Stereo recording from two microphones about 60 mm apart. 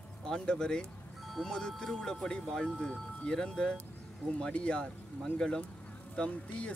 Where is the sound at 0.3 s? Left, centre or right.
Centre.